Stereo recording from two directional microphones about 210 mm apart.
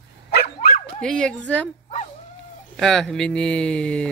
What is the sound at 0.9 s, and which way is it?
Speech, 5° left (ahead or behind).